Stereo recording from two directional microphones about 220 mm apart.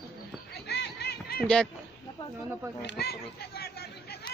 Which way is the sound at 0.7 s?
50° left (ahead or behind).